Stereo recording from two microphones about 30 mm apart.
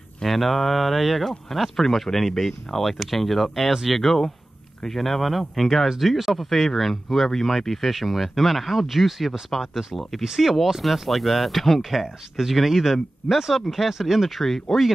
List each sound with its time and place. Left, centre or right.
0.2 s speech: centre
9.5 s speech: centre
10.2 s speech: centre
10.8 s speech: centre